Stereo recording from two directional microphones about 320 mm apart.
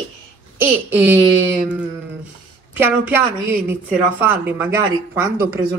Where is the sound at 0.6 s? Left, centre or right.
Centre.